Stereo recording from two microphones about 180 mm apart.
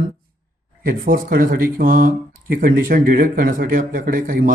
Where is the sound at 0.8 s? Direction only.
55° right (ahead or behind).